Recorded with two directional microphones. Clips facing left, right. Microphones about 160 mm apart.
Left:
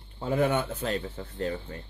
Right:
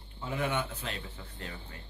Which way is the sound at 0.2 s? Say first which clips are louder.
Left 7 dB; 35° left (ahead or behind).